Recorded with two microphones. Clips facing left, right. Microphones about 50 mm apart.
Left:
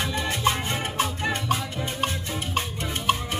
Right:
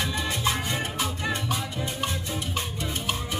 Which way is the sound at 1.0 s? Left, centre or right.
Left.